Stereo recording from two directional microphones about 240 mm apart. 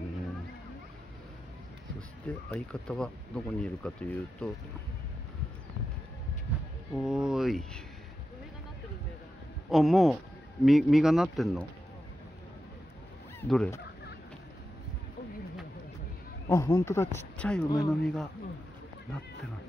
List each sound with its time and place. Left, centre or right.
2.5 s speech: centre
7.0 s speech: centre
9.7 s speech: centre
13.4 s speech: centre
16.4 s speech: centre
17.6 s speech: centre
18.0 s speech: centre